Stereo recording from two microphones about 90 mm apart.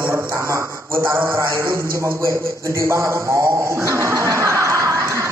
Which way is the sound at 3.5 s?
35° right (ahead or behind).